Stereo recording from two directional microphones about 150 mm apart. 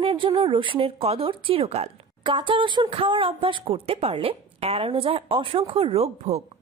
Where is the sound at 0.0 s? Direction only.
35° right (ahead or behind).